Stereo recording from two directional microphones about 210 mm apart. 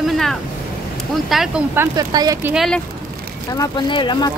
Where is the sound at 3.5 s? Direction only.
20° left (ahead or behind).